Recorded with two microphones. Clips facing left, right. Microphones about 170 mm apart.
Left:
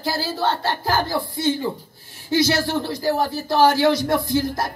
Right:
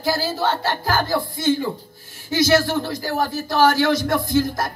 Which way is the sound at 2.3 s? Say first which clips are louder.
Right 2 dB; 30° left (ahead or behind).